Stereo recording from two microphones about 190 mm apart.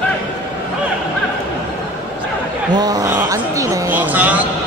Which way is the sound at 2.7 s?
20° right (ahead or behind).